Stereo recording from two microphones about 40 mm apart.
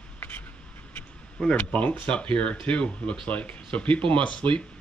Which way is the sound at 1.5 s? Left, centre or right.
Left.